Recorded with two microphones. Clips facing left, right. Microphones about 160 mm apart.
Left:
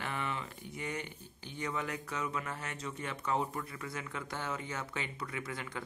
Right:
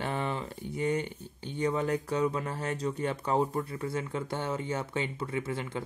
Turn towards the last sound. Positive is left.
turn(degrees=-25)  # may be behind; listen again after turning